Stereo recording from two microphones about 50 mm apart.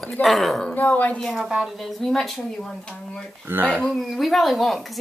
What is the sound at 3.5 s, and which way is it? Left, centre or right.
Speech, right.